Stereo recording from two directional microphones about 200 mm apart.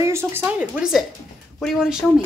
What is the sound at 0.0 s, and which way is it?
A woman's voice, 15° right (ahead or behind).